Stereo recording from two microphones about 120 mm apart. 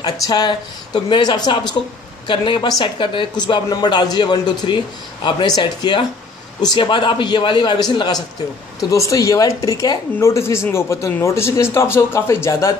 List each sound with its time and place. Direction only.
0.0 s speech: 35° left (ahead or behind)